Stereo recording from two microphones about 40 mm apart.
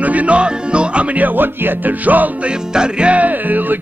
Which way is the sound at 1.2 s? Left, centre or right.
Right.